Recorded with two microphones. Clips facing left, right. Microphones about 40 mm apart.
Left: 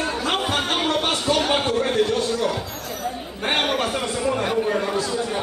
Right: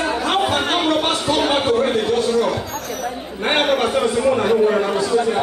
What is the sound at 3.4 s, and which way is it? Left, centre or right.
A man's voice, centre.